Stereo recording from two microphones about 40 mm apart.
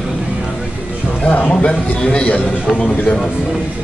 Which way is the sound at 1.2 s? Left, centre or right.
Left.